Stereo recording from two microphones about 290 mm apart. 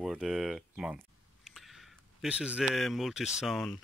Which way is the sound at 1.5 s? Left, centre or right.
Centre.